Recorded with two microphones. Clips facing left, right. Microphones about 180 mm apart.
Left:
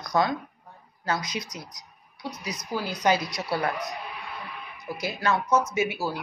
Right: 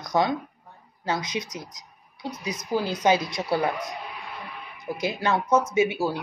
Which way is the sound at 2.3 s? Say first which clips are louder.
Right 5 dB; 25° right (ahead or behind).